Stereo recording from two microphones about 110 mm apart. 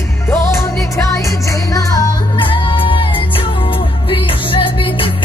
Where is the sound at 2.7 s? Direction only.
50° left (ahead or behind).